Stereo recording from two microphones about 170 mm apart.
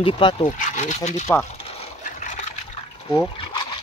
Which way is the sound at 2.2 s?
45° left (ahead or behind).